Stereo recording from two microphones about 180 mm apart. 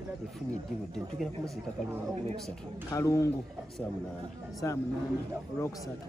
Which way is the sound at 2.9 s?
15° left (ahead or behind).